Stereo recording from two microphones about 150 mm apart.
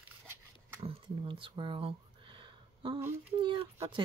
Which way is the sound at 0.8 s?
35° right (ahead or behind).